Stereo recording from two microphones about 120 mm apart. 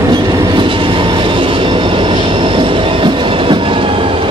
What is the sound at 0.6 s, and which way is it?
Vehicle, 45° right (ahead or behind).